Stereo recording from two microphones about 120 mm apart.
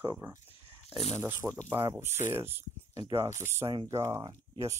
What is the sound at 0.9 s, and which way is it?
Speech, 65° left (ahead or behind).